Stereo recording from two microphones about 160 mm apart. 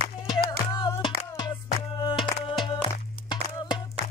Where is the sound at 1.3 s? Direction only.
25° left (ahead or behind).